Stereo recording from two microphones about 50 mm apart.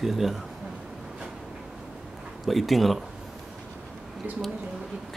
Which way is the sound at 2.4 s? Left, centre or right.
Centre.